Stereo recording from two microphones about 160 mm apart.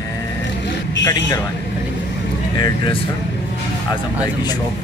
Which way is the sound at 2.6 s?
30° left (ahead or behind).